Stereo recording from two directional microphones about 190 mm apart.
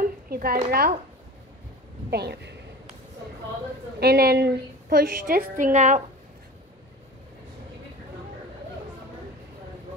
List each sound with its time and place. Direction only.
0.0 s a sound: 50° right (ahead or behind)
0.7 s a woman's voice: 55° right (ahead or behind)
2.0 s speech: 60° right (ahead or behind)
4.0 s a woman's voice: 55° right (ahead or behind); by 6.0 s 40° right (ahead or behind)